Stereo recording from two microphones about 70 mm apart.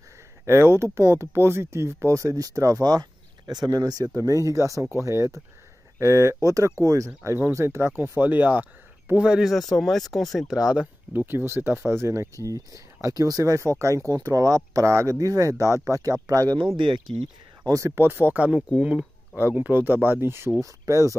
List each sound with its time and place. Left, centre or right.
0.5 s speech: right
4.1 s speech: right
7.5 s speech: right
9.2 s speech: centre
9.5 s speech: centre
10.6 s speech: centre
11.1 s speech: right
14.9 s speech: right
15.1 s speech: right
17.8 s speech: right
18.8 s speech: centre; by 20.5 s right
20.6 s speech: right